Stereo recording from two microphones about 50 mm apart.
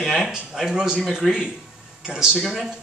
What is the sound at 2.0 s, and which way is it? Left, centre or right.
Speech, centre.